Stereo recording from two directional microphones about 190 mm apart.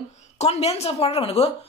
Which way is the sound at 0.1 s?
35° left (ahead or behind).